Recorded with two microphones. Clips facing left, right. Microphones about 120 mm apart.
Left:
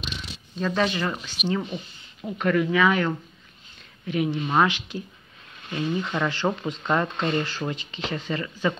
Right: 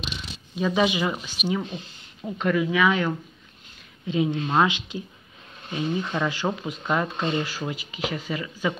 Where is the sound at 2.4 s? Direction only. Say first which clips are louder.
Left 1 dB; 5° right (ahead or behind).